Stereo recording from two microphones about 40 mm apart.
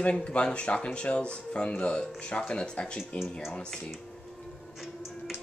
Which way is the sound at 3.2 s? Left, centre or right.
Centre.